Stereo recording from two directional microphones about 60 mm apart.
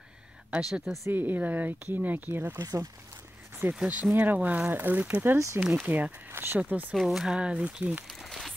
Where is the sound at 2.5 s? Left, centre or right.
Right.